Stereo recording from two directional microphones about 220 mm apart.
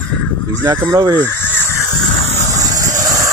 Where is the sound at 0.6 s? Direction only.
10° right (ahead or behind).